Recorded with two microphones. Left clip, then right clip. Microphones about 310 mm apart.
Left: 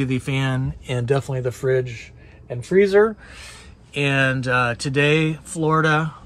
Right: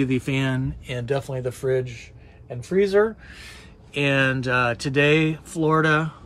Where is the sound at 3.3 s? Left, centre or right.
Centre.